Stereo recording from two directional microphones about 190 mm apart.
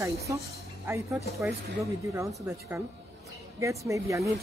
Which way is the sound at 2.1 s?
10° right (ahead or behind).